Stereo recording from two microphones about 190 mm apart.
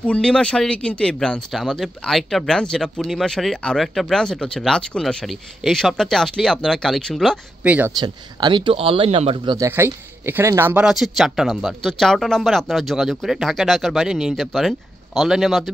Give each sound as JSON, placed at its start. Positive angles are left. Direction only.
{"t": 0.0, "sound": "speech", "side_deg": 5}
{"t": 8.0, "sound": "speech", "side_deg": -20}
{"t": 9.7, "sound": "speech", "side_deg": -10}